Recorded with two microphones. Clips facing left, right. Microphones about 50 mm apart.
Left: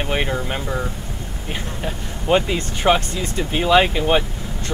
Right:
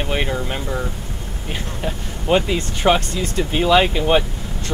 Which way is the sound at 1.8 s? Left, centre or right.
Centre.